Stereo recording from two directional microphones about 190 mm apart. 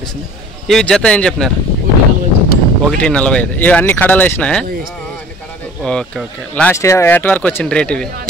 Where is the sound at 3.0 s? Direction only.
5° left (ahead or behind).